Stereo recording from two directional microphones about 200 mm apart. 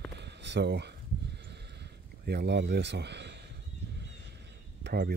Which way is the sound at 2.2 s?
55° right (ahead or behind).